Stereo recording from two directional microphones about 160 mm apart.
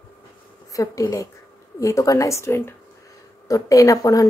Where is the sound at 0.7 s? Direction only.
20° left (ahead or behind).